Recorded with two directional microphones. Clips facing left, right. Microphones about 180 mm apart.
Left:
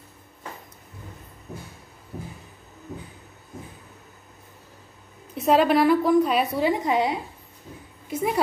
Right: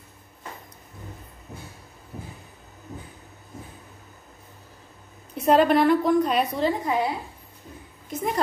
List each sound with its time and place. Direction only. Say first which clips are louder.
5.3 s a woman's voice: right 1 dB; centre (ahead or behind)
6.8 s a woman's voice: left 2 dB; 20° left (ahead or behind)
8.1 s speech: left 2 dB; 5° left (ahead or behind)